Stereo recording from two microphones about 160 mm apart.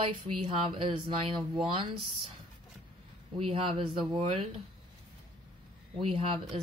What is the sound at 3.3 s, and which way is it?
Speech, 35° right (ahead or behind).